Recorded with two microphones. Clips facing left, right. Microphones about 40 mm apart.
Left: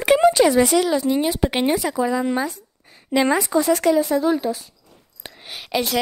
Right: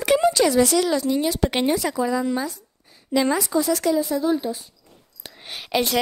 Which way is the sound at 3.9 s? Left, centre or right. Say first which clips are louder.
Left 3 dB; left.